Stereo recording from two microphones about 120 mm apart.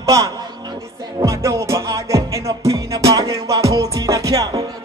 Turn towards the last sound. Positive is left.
turn(degrees=-30)  # may be behind; listen again after turning